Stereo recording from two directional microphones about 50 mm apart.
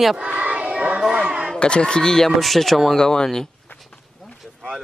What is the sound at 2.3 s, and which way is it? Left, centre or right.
Speech, centre.